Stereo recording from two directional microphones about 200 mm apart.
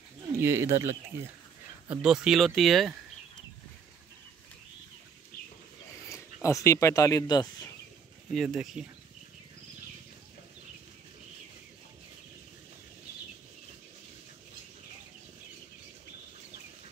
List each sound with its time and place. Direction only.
0.4 s speech: 10° right (ahead or behind)
1.9 s speech: 5° right (ahead or behind)
6.0 s speech: 15° left (ahead or behind)
8.3 s speech: centre (ahead or behind)